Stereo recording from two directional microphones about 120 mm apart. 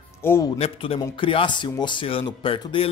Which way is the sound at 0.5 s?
50° left (ahead or behind).